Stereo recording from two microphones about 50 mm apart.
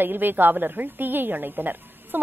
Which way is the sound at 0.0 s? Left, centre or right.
Right.